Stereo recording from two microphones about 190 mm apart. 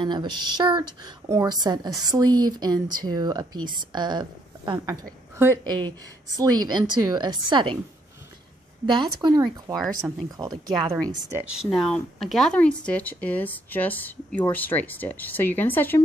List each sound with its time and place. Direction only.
0.0 s speech: 25° right (ahead or behind)
8.8 s speech: 25° right (ahead or behind)
11.3 s speech: 5° right (ahead or behind)